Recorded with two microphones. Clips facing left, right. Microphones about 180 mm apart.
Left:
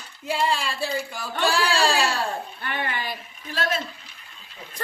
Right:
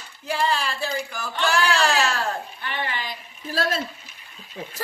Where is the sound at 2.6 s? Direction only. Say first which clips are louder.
Left 1 dB; 50° left (ahead or behind).